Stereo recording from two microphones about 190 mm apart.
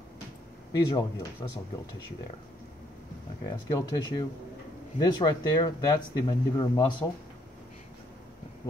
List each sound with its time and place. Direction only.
0.7 s speech: 20° left (ahead or behind)
3.4 s speech: 20° left (ahead or behind)